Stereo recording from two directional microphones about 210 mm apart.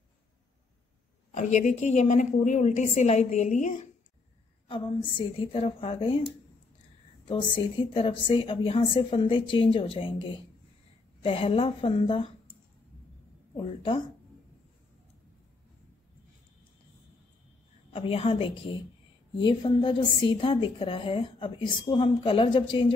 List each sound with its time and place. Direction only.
1.3 s a woman's voice: 35° left (ahead or behind)
4.6 s a woman's voice: 25° left (ahead or behind)
7.2 s a woman's voice: 25° left (ahead or behind)
13.6 s a woman's voice: 25° left (ahead or behind)
17.9 s a woman's voice: 25° left (ahead or behind)